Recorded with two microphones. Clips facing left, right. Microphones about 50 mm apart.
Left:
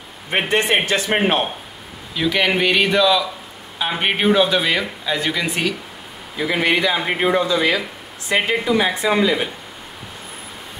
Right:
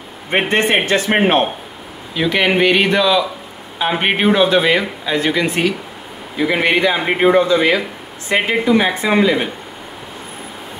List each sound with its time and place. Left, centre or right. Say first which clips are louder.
0.5 s speech: right 2 dB; centre